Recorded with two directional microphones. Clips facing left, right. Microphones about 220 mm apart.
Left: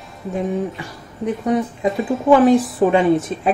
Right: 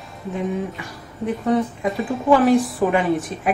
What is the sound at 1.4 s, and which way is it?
Speech, 20° left (ahead or behind).